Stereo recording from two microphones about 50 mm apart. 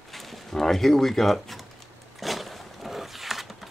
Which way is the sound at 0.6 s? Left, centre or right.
Centre.